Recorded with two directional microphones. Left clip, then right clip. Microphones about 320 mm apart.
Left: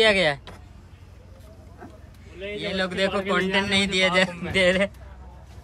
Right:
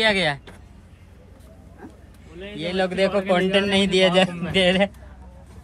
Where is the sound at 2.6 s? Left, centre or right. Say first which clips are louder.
Right 4 dB; centre.